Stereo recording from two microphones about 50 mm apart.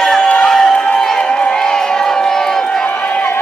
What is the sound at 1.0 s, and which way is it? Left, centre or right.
Crowd, centre.